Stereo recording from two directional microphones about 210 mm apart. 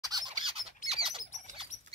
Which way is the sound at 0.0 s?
20° right (ahead or behind).